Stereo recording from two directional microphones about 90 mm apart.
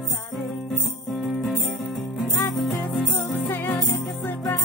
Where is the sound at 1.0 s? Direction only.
Centre (ahead or behind).